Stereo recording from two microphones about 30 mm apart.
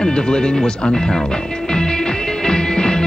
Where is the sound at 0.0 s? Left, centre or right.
Left.